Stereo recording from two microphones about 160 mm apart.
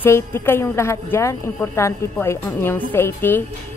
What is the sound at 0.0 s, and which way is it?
A woman's voice, 15° left (ahead or behind).